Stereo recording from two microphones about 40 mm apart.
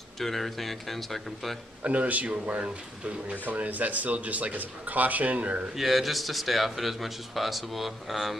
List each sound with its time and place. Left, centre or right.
0.2 s a man's voice: centre
1.8 s speech: right
3.4 s speech: right
5.8 s a man's voice: centre